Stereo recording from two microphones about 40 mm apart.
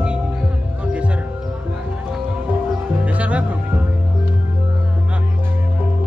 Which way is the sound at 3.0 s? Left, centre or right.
Right.